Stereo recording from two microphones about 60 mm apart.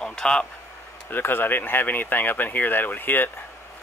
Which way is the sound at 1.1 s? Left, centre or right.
Left.